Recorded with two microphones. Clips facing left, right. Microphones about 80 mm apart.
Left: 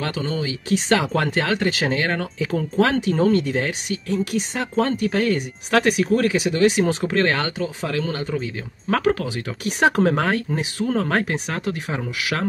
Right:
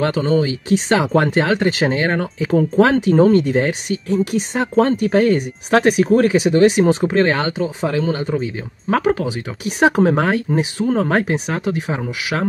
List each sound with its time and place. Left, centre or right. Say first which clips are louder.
0.0 s speech: right 8 dB; right
0.7 s speech: left 1 dB; right